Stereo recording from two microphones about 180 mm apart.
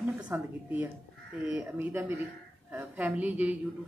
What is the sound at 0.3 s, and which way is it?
A woman's voice, 10° right (ahead or behind).